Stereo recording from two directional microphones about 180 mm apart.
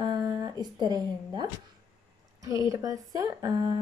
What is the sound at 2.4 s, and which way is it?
A woman's voice, 20° right (ahead or behind).